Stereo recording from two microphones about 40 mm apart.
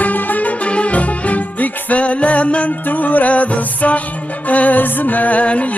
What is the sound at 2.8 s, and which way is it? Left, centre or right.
Music, left.